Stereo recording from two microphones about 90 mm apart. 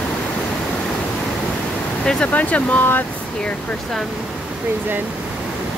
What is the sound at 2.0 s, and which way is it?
Speech, 15° left (ahead or behind).